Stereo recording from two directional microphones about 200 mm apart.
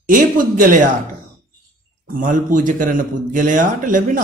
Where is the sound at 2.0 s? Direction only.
40° right (ahead or behind).